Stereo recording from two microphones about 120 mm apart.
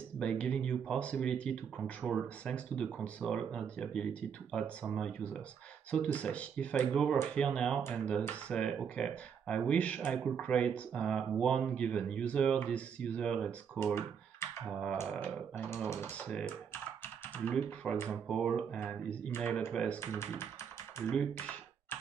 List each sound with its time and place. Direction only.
0.2 s speech: 10° left (ahead or behind)
2.8 s speech: 10° left (ahead or behind)
15.0 s speech: 10° left (ahead or behind)
17.5 s speech: 10° left (ahead or behind)
20.0 s speech: 20° left (ahead or behind)
21.1 s computer keyboard: 10° left (ahead or behind)